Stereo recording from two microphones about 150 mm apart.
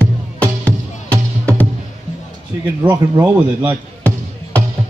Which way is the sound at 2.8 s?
20° right (ahead or behind).